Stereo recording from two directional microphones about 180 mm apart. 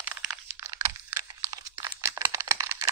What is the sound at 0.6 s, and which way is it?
Computer keyboard, 15° right (ahead or behind).